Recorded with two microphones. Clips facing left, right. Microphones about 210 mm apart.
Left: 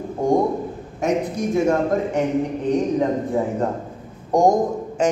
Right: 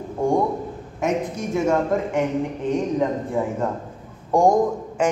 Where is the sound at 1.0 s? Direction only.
35° left (ahead or behind).